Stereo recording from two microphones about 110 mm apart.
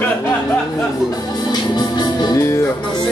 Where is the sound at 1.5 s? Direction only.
40° left (ahead or behind).